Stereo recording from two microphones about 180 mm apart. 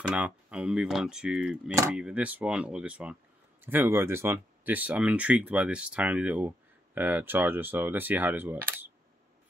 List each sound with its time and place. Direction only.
0.1 s speech: 5° right (ahead or behind)